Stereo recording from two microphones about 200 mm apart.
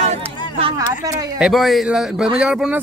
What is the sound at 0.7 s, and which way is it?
Speech, 15° right (ahead or behind).